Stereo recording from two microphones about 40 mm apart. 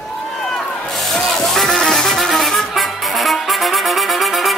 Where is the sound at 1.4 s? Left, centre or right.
Centre.